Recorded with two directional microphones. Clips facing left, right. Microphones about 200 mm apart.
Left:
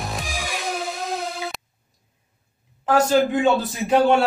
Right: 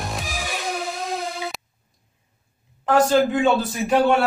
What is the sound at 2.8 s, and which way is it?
Speech, 5° left (ahead or behind).